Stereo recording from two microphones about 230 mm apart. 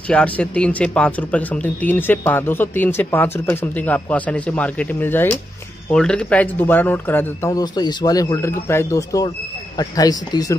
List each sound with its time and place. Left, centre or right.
0.1 s speech: centre